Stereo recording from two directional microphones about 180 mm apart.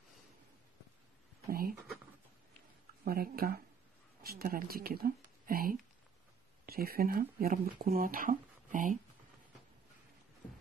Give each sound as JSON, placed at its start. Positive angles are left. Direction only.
{"t": 1.5, "sound": "speech", "side_deg": -55}
{"t": 3.1, "sound": "speech", "side_deg": -55}